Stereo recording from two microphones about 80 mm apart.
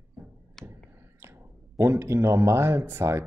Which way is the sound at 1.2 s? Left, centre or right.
Right.